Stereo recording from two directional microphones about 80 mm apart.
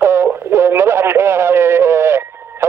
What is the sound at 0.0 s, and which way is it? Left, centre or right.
Radio, right.